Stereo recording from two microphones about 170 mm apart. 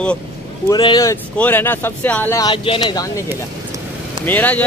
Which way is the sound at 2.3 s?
25° left (ahead or behind).